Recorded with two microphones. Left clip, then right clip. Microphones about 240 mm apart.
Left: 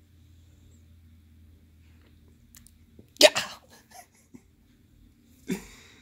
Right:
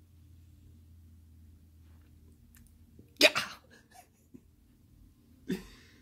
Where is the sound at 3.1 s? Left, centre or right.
Left.